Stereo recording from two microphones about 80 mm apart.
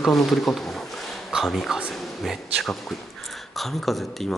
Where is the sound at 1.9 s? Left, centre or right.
Centre.